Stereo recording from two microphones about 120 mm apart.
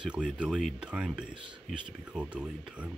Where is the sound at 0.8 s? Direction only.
10° right (ahead or behind).